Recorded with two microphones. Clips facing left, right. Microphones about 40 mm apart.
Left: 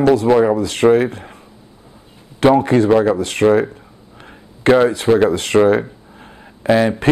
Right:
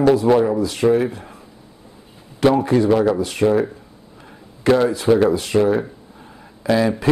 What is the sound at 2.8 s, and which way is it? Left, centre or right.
Speech, left.